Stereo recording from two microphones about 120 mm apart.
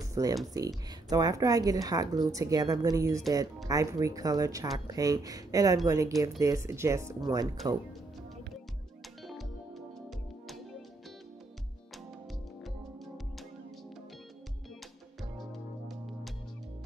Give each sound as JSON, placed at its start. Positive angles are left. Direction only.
{"t": 0.1, "sound": "a woman's voice", "side_deg": -30}
{"t": 9.3, "sound": "music", "side_deg": 0}
{"t": 12.6, "sound": "music", "side_deg": 0}